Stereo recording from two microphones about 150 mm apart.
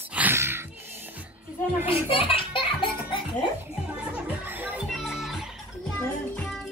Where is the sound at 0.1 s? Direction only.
15° right (ahead or behind).